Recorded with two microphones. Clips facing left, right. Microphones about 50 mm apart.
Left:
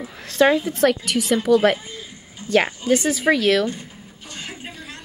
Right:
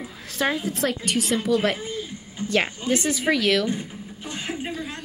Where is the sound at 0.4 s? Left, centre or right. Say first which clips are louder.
Left 8 dB; left.